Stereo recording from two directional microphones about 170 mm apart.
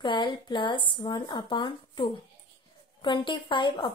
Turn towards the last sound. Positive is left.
turn(degrees=30)  # may be behind; listen again after turning